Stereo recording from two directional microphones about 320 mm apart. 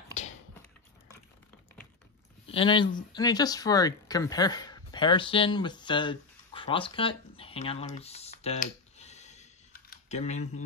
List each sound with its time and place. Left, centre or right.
2.4 s speech: centre